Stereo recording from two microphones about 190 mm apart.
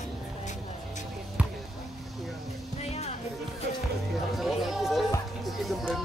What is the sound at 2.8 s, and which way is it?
Music, 35° left (ahead or behind).